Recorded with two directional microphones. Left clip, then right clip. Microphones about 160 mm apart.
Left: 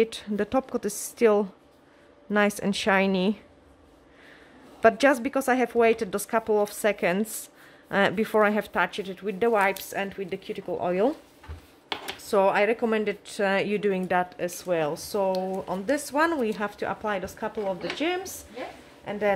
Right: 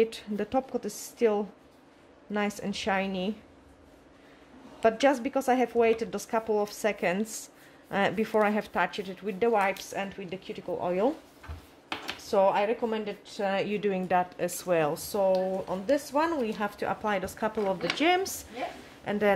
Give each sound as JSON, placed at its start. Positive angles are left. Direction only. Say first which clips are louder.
{"t": 0.0, "sound": "a woman's voice", "louder": "left 2 dB", "side_deg": 20}
{"t": 4.8, "sound": "speech", "louder": "left 4 dB", "side_deg": 30}
{"t": 12.3, "sound": "speech", "louder": "left 3 dB", "side_deg": 30}
{"t": 14.4, "sound": "speech", "louder": "even", "side_deg": 0}
{"t": 15.3, "sound": "speech", "louder": "even", "side_deg": 40}
{"t": 16.3, "sound": "speech", "louder": "left 3 dB", "side_deg": 25}
{"t": 17.2, "sound": "speech", "louder": "right 1 dB", "side_deg": 0}
{"t": 17.9, "sound": "a woman's voice", "louder": "right 3 dB", "side_deg": -15}